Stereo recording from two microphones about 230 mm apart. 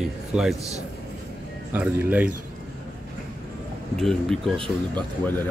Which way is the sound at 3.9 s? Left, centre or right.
Centre.